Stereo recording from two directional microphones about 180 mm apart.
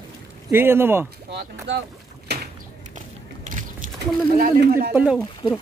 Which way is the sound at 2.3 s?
65° right (ahead or behind).